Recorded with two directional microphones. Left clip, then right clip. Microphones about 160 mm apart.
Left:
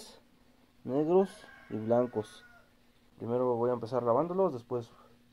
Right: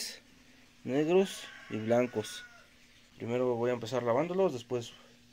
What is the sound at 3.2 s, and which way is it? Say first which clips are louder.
Speech: left 1 dB; 25° right (ahead or behind).